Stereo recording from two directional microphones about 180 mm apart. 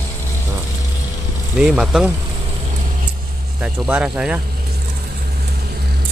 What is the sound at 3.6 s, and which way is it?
Speech, 5° right (ahead or behind).